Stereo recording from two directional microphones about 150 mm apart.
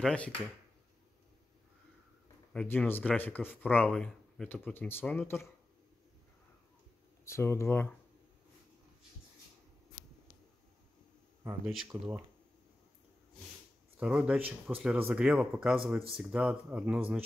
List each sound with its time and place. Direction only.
0.0 s speech: 10° left (ahead or behind)
2.5 s speech: 5° left (ahead or behind)
7.2 s speech: 20° left (ahead or behind)
11.6 s speech: centre (ahead or behind)
13.9 s speech: 10° right (ahead or behind)